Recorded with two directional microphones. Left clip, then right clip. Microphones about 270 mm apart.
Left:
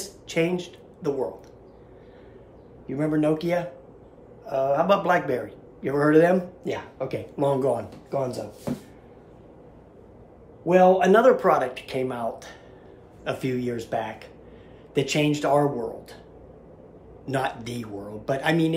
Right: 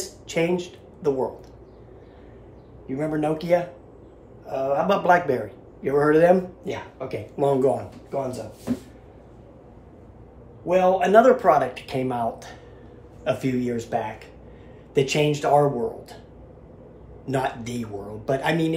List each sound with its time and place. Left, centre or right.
0.0 s a sound: centre
2.9 s a man's voice: centre
10.7 s a man's voice: centre
17.3 s a man's voice: centre